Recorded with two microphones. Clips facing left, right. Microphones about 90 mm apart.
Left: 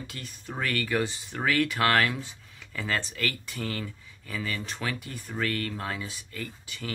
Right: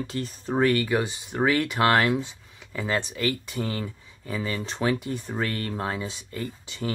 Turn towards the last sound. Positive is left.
turn(degrees=-25)  # may be behind; listen again after turning